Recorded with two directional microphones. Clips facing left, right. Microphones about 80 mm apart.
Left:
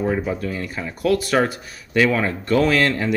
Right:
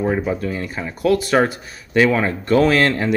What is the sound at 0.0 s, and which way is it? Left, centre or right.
Speech, right.